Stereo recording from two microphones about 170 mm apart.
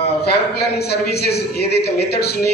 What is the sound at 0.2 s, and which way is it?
A man's voice, 70° left (ahead or behind).